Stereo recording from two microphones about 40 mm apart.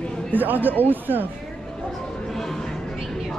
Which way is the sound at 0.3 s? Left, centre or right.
Right.